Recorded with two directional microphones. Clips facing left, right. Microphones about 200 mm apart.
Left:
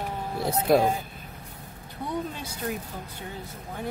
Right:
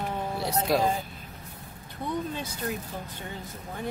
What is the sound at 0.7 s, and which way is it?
Speech, 55° left (ahead or behind).